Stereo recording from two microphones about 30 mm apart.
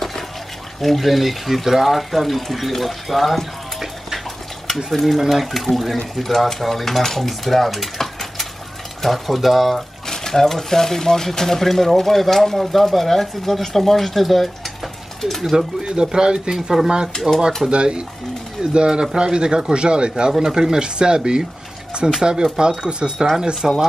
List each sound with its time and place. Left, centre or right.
0.7 s speech: centre
4.9 s speech: centre
8.0 s a sound: centre
9.0 s speech: centre
9.8 s speech: centre
15.5 s speech: right
16.5 s speech: centre
17.6 s speech: right
23.1 s speech: centre